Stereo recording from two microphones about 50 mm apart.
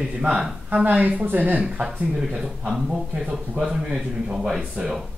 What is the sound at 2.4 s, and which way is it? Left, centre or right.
A man's voice, centre.